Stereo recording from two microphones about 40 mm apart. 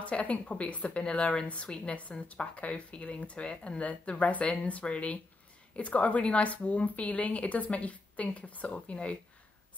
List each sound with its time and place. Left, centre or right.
0.0 s speech: left